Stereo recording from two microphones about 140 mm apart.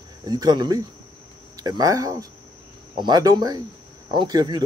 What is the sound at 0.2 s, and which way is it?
Speech, 30° right (ahead or behind).